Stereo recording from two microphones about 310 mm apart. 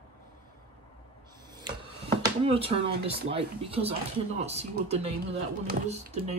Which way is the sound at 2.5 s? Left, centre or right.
Centre.